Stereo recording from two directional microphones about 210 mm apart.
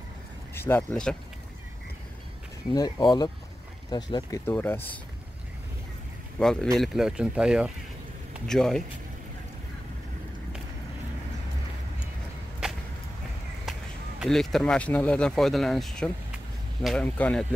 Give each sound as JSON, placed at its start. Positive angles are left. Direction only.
{"t": 0.6, "sound": "speech", "side_deg": 10}
{"t": 2.7, "sound": "speech", "side_deg": 20}
{"t": 6.4, "sound": "speech", "side_deg": 5}
{"t": 14.2, "sound": "speech", "side_deg": 0}